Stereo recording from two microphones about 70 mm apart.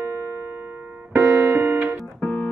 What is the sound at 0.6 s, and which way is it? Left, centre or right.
Music, right.